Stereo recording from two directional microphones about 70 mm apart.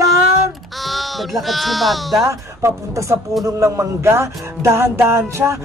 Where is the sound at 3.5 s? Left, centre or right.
Right.